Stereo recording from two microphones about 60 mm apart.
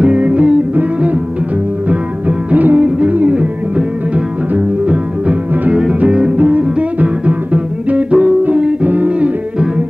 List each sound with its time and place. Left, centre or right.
0.0 s music: right